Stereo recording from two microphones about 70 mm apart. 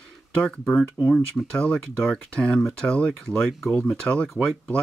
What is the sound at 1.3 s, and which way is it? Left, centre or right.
Speech, centre.